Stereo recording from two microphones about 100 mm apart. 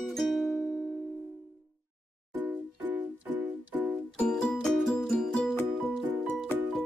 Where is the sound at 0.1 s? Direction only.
Centre (ahead or behind).